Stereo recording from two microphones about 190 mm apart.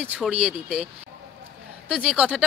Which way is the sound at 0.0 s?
5° right (ahead or behind).